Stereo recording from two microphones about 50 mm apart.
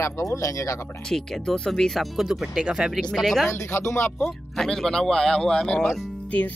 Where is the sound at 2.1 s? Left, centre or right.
Centre.